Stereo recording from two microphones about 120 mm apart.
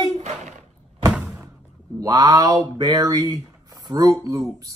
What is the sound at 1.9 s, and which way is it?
Speech, 30° right (ahead or behind).